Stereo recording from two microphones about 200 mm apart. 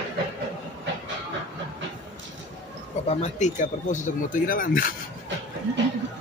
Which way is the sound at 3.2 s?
35° left (ahead or behind).